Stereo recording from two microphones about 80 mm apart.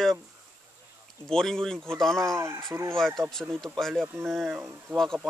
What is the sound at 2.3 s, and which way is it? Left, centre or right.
Speech, right.